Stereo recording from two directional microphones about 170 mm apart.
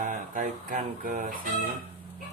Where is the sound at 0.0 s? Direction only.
50° right (ahead or behind).